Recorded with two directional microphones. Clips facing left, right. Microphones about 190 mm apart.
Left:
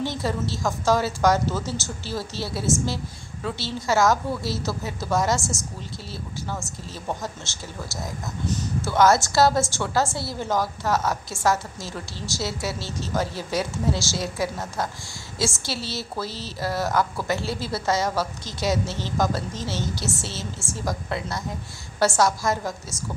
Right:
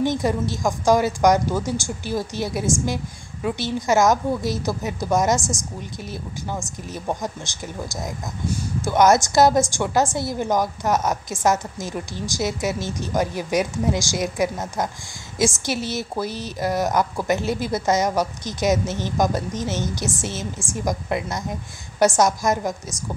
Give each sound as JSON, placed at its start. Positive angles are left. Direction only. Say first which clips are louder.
{"t": 0.0, "sound": "speech", "louder": "right 5 dB", "side_deg": -15}